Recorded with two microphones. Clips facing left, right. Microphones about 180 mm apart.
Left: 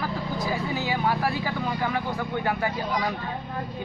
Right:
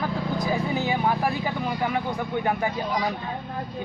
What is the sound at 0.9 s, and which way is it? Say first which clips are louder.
Speech: left 1 dB; 20° right (ahead or behind).